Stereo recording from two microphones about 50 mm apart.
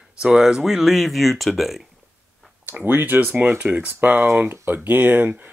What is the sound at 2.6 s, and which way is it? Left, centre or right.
Speech, right.